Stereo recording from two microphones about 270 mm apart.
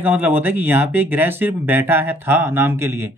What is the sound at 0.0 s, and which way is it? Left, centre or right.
Speech, centre.